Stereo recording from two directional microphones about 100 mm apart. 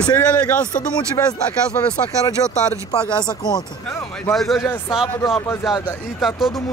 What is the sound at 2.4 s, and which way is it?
Speech, 40° left (ahead or behind).